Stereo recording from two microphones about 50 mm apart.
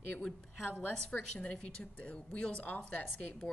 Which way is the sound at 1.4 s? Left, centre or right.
Left.